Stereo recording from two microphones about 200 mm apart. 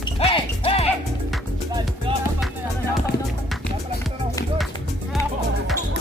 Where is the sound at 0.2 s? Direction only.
30° left (ahead or behind).